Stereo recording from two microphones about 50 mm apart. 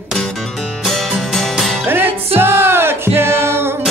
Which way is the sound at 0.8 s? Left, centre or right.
Centre.